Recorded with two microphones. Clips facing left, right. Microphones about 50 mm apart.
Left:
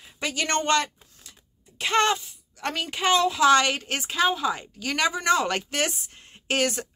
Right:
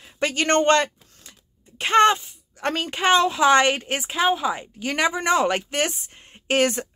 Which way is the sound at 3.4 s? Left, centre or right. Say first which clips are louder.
Right 2 dB; right.